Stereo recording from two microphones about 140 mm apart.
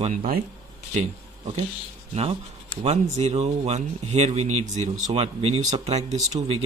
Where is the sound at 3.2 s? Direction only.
50° right (ahead or behind).